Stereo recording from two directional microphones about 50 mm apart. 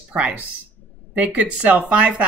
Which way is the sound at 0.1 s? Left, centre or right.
Right.